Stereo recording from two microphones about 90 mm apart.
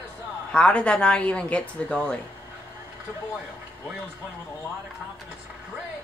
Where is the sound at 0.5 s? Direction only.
10° left (ahead or behind).